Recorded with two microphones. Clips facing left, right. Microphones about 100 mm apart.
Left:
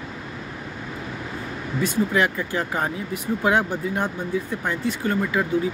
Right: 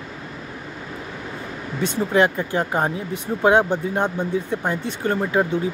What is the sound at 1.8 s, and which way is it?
Speech, 25° right (ahead or behind).